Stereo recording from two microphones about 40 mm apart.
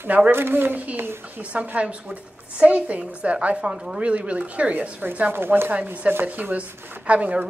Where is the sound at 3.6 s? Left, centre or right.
Right.